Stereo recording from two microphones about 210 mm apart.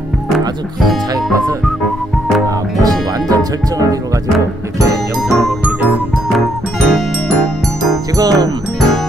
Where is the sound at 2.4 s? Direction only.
15° right (ahead or behind).